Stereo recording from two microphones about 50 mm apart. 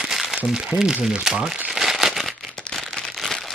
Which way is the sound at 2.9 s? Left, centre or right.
Centre.